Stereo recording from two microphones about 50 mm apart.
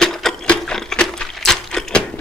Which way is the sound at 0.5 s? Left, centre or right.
Centre.